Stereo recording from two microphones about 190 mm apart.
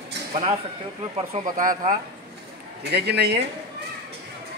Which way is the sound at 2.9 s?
60° right (ahead or behind).